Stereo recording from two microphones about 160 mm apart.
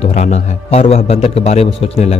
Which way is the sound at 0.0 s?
45° left (ahead or behind).